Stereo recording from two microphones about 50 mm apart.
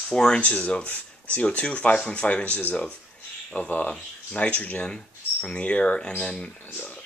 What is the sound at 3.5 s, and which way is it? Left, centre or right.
Speech, left.